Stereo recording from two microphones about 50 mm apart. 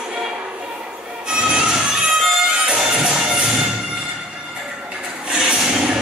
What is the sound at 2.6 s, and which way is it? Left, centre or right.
Music, centre.